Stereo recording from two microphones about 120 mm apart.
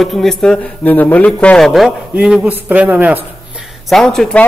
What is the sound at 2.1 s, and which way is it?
A man's voice, 10° right (ahead or behind).